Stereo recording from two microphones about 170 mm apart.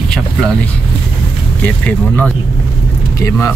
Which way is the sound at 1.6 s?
10° left (ahead or behind).